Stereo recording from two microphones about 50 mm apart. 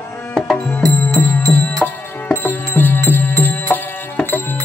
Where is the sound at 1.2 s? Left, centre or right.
Left.